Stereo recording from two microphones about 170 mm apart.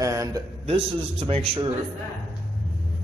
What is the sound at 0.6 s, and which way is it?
A man's voice, 35° right (ahead or behind).